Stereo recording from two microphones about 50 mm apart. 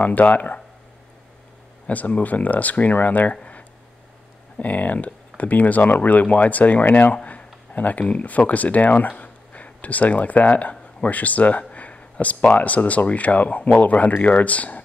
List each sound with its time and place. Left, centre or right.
0.0 s speech: left
1.9 s speech: left
4.6 s speech: left
7.2 s a sound: left
8.1 s speech: left